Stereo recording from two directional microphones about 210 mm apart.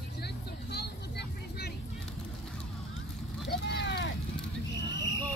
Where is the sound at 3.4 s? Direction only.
55° left (ahead or behind).